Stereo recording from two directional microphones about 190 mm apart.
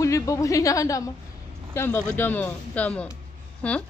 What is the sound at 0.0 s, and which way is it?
A woman's voice, 15° left (ahead or behind).